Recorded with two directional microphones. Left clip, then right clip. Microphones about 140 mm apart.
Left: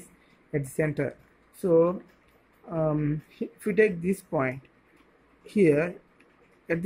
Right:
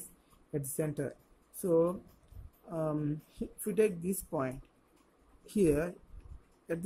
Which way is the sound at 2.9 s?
15° right (ahead or behind).